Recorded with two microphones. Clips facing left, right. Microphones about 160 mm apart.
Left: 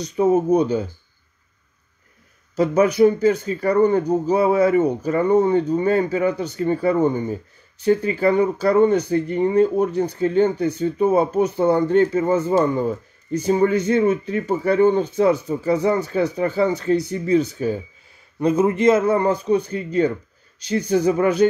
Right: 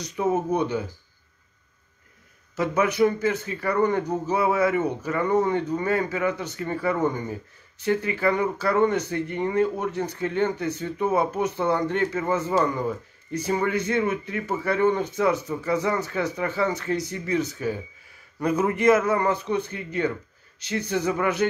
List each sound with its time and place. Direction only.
0.0 s speech: 30° left (ahead or behind)
2.5 s a man's voice: 30° left (ahead or behind)